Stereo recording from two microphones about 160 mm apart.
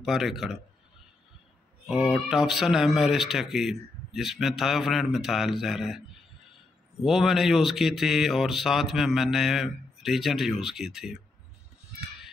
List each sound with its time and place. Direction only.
0.0 s speech: centre (ahead or behind)
1.9 s speech: centre (ahead or behind)